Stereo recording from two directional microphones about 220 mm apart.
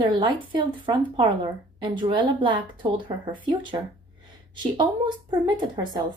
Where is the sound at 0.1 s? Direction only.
20° right (ahead or behind).